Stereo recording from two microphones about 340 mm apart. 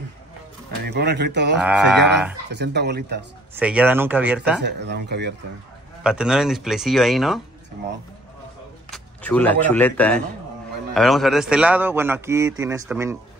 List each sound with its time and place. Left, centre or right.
0.8 s speech: right
1.6 s a man's voice: centre
2.5 s speech: right
3.5 s a man's voice: centre
4.6 s speech: right
6.0 s a man's voice: centre
8.9 s a man's voice: centre